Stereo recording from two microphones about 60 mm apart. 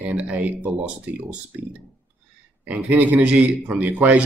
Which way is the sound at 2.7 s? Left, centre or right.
Right.